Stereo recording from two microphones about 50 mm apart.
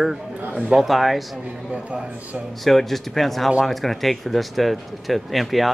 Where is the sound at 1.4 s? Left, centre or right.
Right.